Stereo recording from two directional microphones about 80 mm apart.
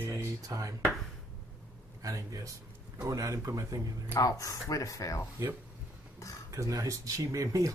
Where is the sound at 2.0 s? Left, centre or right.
Right.